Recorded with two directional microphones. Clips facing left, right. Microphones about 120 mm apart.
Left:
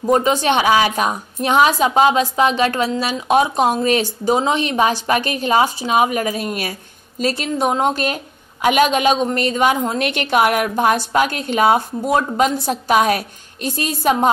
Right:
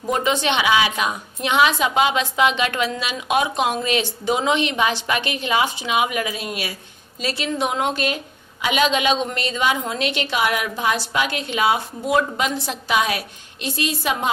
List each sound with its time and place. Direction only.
0.0 s a woman's voice: 40° left (ahead or behind)